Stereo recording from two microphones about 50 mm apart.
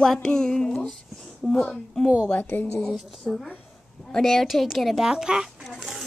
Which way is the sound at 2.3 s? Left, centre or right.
Left.